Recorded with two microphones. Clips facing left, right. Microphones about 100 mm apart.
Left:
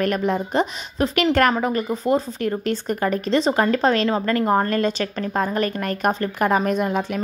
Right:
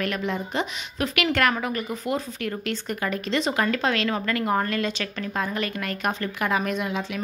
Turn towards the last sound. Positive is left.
turn(degrees=45)  # may be behind; listen again after turning